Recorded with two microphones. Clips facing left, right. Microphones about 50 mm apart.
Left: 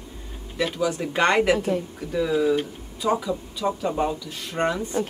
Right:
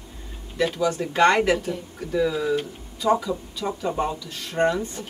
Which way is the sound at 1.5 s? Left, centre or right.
Left.